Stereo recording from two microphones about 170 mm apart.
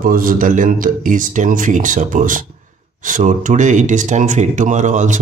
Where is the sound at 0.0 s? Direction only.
55° right (ahead or behind).